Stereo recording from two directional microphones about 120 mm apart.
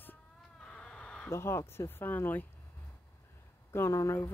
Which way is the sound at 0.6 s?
10° left (ahead or behind).